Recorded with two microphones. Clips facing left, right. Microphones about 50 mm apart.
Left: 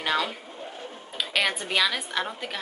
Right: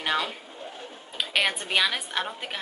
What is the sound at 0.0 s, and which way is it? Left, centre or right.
Pigeon, centre.